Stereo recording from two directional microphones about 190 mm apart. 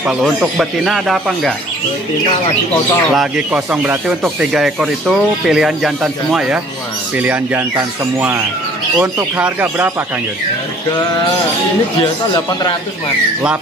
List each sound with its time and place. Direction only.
0.0 s speech: 5° right (ahead or behind)
3.2 s speech: 5° right (ahead or behind)
12.0 s speech: 20° left (ahead or behind)